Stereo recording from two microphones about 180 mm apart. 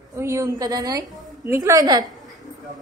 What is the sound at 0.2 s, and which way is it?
A woman's voice, 15° right (ahead or behind).